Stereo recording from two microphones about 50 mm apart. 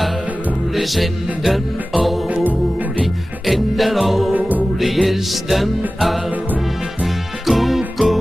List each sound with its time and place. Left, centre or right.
0.7 s music: centre
2.2 s music: right
3.4 s music: centre
4.3 s music: right
4.7 s music: centre
7.4 s music: centre